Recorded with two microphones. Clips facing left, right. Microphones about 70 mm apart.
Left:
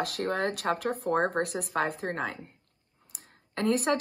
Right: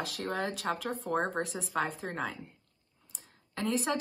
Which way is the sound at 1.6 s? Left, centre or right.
Centre.